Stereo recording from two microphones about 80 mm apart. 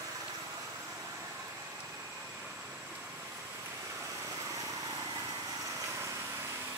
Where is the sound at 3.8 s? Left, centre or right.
Right.